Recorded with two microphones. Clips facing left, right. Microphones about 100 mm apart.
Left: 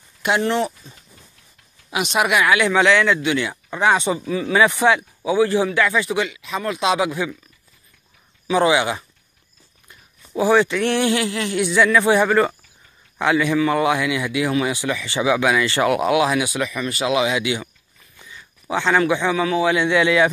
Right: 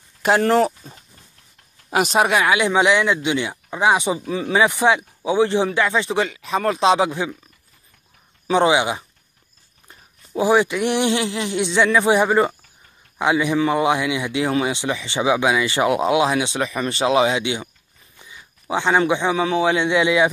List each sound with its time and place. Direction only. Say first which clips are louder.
0.2 s speech: right 4 dB; 40° right (ahead or behind)
2.5 s speech: left 1 dB; 20° right (ahead or behind)
4.3 s speech: left 1 dB; 25° right (ahead or behind)
8.5 s speech: even; 25° right (ahead or behind)
10.4 s a man's voice: left 1 dB; 15° right (ahead or behind)